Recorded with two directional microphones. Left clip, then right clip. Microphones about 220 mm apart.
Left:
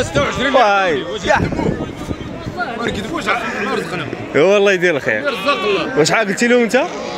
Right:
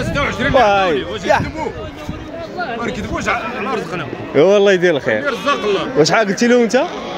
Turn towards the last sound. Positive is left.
turn(degrees=-15)  # may be behind; listen again after turning